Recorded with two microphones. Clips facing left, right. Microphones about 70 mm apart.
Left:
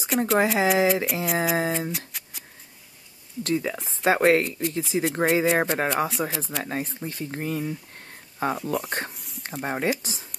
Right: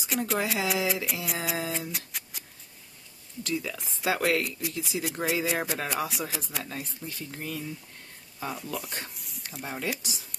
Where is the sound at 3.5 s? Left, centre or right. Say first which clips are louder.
Left 6 dB; left.